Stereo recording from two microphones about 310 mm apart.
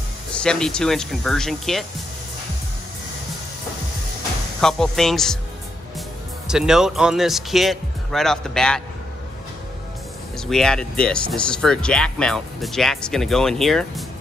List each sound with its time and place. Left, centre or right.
0.3 s speech: centre
4.6 s speech: centre
10.4 s speech: centre